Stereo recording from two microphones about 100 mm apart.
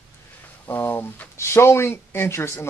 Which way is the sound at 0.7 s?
20° left (ahead or behind).